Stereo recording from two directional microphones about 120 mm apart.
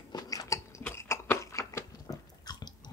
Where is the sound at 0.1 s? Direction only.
30° left (ahead or behind).